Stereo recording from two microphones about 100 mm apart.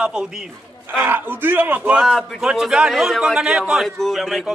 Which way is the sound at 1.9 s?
5° right (ahead or behind).